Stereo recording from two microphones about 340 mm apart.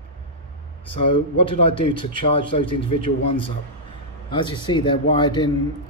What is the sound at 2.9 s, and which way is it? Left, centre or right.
Speech, left.